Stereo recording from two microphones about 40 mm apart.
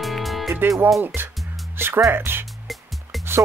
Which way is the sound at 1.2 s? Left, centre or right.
Right.